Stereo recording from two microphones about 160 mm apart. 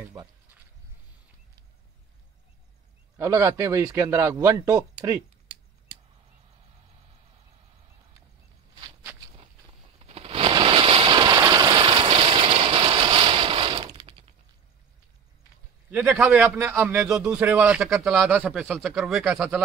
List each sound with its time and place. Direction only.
3.2 s speech: 15° right (ahead or behind)
9.9 s a sound: 40° right (ahead or behind)
15.9 s speech: 10° right (ahead or behind)